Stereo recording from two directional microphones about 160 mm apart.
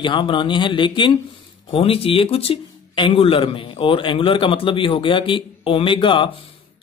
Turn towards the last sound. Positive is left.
turn(degrees=30)  # may be behind; listen again after turning